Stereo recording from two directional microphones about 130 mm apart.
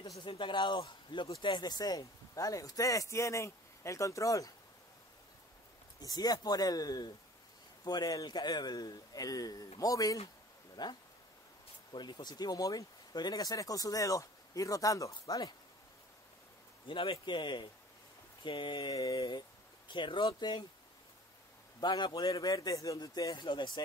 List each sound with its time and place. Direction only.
0.2 s speech: 40° left (ahead or behind); by 4.5 s 25° left (ahead or behind)
5.9 s speech: 30° left (ahead or behind)
16.8 s speech: 40° left (ahead or behind)
21.7 s speech: 35° left (ahead or behind)